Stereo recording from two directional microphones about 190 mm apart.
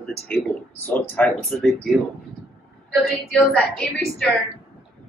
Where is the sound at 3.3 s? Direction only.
Centre (ahead or behind).